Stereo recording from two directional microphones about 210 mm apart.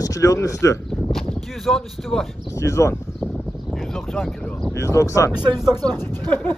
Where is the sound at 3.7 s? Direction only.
Centre (ahead or behind).